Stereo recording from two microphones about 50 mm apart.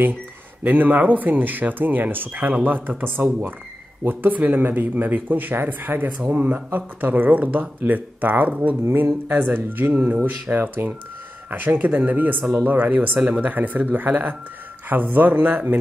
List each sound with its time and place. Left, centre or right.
0.7 s speech: right